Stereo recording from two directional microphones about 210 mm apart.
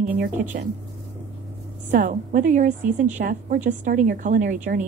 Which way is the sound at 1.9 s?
40° right (ahead or behind).